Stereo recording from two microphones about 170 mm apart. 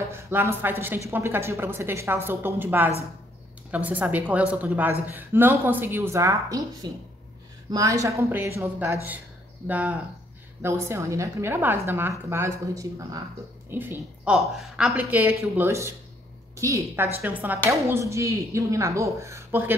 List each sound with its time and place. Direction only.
0.1 s a woman's voice: 15° right (ahead or behind)